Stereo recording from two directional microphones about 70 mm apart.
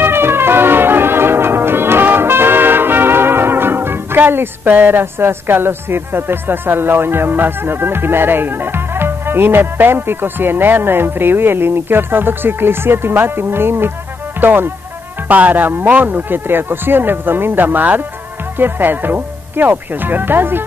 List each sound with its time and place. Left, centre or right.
0.0 s music: right
14.4 s speech: right